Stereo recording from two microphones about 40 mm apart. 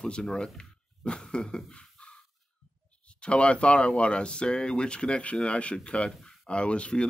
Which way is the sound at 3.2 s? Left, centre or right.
Left.